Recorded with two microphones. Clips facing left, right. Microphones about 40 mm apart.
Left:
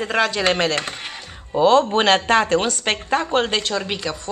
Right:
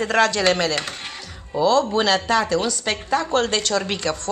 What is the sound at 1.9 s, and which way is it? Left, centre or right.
Speech, left.